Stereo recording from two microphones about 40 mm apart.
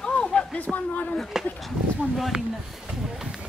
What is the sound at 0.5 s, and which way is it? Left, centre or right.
Speech, left.